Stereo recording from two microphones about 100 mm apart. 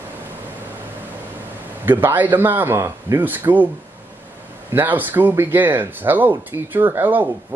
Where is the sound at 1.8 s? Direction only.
20° right (ahead or behind).